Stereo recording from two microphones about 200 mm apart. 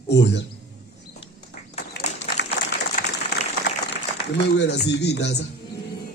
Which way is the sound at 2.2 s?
60° left (ahead or behind).